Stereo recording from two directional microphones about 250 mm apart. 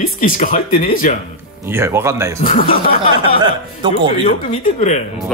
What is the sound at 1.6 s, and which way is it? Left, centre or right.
Speech, centre.